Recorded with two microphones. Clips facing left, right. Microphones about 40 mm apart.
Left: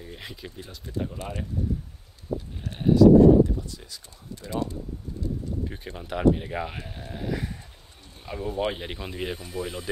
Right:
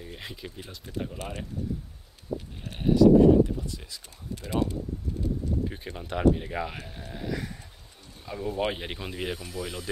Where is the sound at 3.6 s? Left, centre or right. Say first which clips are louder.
Right 2 dB; right.